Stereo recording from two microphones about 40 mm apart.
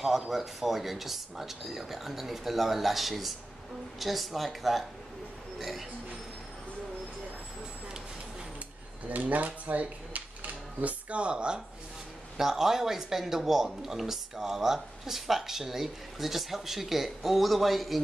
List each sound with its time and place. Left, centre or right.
0.0 s speech: centre
9.1 s speech: right
12.4 s speech: centre